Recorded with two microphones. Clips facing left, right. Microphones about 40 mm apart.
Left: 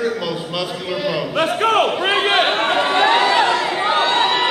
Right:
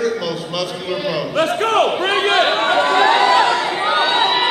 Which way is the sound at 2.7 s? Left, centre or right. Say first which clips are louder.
Right 2 dB; centre.